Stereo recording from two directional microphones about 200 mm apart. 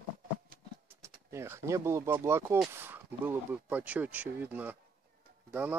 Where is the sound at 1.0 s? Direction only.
15° right (ahead or behind).